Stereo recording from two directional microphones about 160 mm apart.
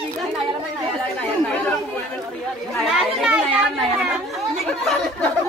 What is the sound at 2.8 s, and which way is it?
Children playing, 5° right (ahead or behind).